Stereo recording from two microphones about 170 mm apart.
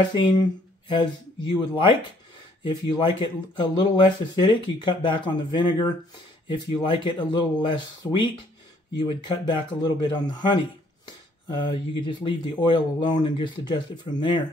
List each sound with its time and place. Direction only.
0.1 s speech: 25° left (ahead or behind)